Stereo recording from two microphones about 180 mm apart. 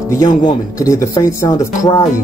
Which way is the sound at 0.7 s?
20° left (ahead or behind).